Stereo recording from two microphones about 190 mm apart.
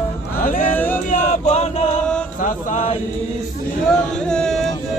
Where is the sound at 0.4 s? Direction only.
45° left (ahead or behind).